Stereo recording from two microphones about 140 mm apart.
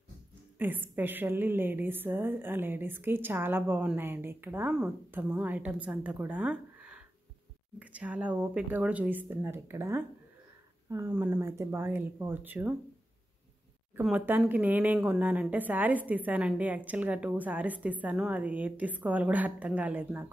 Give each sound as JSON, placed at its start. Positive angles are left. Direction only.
{"t": 0.6, "sound": "a woman's voice", "side_deg": -15}
{"t": 14.0, "sound": "a woman's voice", "side_deg": -10}